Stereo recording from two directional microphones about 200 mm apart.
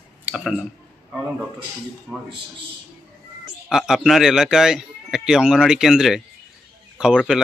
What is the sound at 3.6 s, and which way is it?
Speech, centre (ahead or behind).